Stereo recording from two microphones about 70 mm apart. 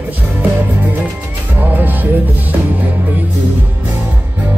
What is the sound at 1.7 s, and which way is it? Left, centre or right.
Music, right.